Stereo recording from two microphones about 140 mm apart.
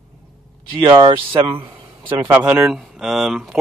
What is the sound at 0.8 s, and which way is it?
Speech, 35° right (ahead or behind).